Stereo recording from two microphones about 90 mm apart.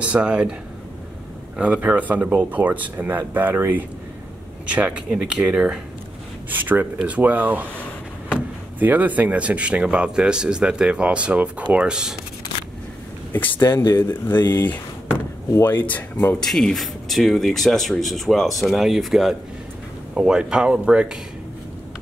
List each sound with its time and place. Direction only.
0.0 s speech: 15° right (ahead or behind)
1.6 s speech: 15° right (ahead or behind)
6.5 s speech: 20° right (ahead or behind)
13.6 s speech: 25° left (ahead or behind)
16.3 s speech: 5° left (ahead or behind); by 21.2 s 10° right (ahead or behind)